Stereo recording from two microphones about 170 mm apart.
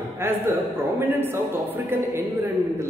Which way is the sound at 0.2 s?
15° right (ahead or behind).